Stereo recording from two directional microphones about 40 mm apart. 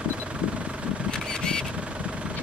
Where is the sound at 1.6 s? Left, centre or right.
Right.